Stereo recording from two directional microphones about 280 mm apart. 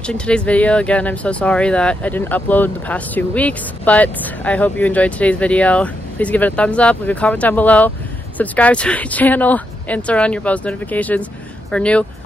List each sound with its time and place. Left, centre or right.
0.0 s speech: centre